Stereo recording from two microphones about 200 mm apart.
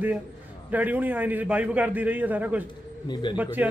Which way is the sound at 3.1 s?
25° left (ahead or behind).